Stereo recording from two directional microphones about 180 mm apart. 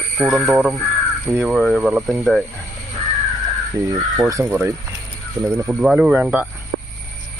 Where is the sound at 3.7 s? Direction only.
20° right (ahead or behind).